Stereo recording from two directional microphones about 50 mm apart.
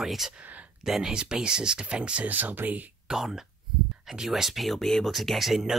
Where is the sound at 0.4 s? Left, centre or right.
Right.